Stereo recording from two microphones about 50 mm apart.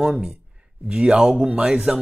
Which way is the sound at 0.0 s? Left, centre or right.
Centre.